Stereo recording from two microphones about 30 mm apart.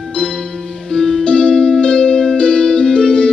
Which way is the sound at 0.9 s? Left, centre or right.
Centre.